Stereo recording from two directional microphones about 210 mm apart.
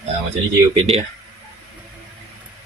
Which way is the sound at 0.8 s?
30° right (ahead or behind).